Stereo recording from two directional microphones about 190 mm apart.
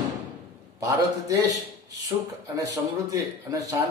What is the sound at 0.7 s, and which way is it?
A man's voice, 15° right (ahead or behind).